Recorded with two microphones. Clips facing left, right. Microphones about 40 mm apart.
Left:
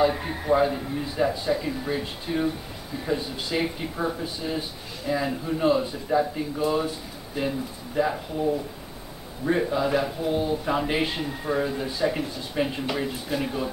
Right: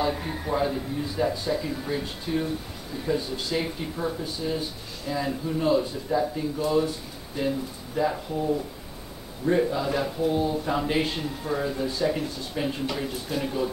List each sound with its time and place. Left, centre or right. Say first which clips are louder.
0.0 s a man's voice: left 4 dB; centre
9.5 s a man's voice: left 1 dB; centre